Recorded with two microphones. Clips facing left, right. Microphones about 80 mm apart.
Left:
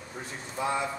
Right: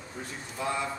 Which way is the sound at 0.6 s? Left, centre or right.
Centre.